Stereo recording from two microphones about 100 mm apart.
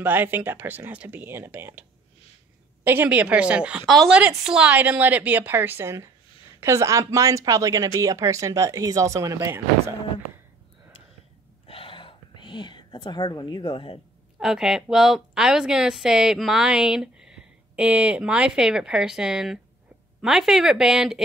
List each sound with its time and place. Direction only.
0.0 s a woman's voice: 20° right (ahead or behind)
3.8 s a woman's voice: centre (ahead or behind)
4.5 s a woman's voice: 10° right (ahead or behind); by 9.5 s 30° right (ahead or behind)
9.5 s speech: 20° right (ahead or behind)
11.6 s a sound: 65° left (ahead or behind)
14.4 s a woman's voice: 5° right (ahead or behind)